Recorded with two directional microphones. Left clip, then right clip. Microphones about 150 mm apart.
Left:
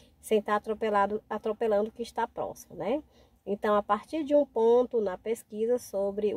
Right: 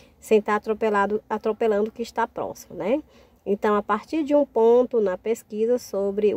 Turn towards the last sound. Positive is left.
turn(degrees=-20)  # may be behind; listen again after turning